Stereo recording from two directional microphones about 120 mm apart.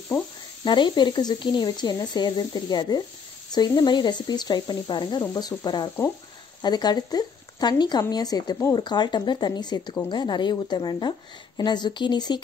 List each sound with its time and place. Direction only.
0.7 s a woman's voice: 40° left (ahead or behind)